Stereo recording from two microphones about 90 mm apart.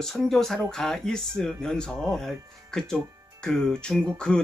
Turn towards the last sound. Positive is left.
turn(degrees=10)  # may be behind; listen again after turning